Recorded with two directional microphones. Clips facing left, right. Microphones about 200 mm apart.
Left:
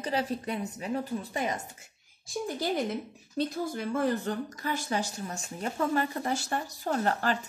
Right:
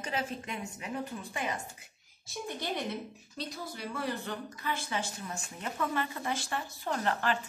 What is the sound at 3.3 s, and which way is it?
Speech, 50° left (ahead or behind).